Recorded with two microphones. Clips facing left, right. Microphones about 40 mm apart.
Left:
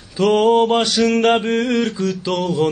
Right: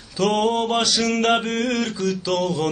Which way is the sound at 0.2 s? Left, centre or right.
Centre.